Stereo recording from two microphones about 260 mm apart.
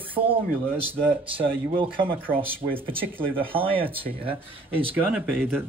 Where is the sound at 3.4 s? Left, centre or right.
Right.